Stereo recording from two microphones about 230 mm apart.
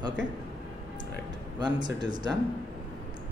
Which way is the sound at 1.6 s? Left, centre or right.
Centre.